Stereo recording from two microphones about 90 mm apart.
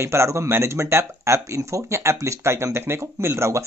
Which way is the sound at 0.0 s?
30° right (ahead or behind).